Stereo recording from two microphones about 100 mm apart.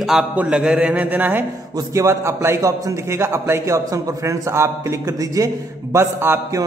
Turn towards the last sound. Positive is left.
turn(degrees=-25)  # may be behind; listen again after turning